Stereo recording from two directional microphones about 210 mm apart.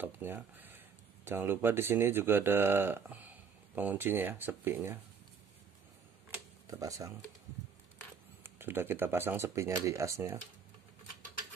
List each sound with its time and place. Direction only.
0.0 s speech: 10° right (ahead or behind)
6.3 s a sound: 15° right (ahead or behind)
8.5 s speech: 10° right (ahead or behind)